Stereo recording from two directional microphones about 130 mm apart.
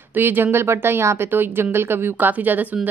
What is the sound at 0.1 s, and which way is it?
Speech, 15° right (ahead or behind).